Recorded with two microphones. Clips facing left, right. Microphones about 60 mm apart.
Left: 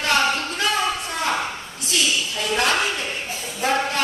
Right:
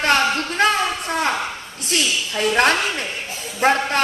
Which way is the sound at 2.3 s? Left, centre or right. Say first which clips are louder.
Right 8 dB; right.